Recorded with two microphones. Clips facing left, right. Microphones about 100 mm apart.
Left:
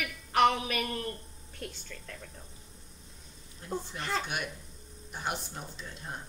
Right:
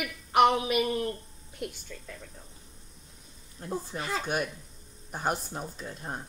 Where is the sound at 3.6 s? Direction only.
45° right (ahead or behind).